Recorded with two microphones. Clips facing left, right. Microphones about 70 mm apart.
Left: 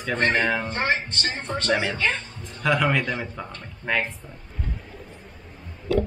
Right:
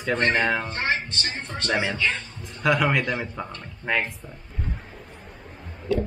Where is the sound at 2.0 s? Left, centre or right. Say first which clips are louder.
Left 1 dB; left.